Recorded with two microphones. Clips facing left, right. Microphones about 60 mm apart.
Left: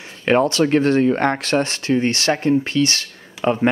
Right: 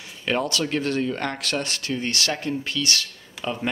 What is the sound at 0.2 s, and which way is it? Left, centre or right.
Speech, left.